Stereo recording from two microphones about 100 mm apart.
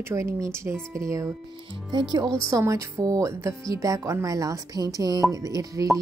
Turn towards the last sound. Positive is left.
turn(degrees=-35)  # may be behind; listen again after turning